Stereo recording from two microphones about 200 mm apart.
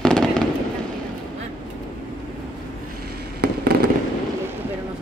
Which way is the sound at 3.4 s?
55° right (ahead or behind).